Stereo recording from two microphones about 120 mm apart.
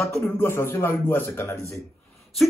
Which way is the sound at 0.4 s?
20° left (ahead or behind).